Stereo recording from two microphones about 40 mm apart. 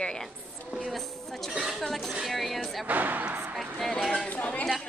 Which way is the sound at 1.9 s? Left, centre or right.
Centre.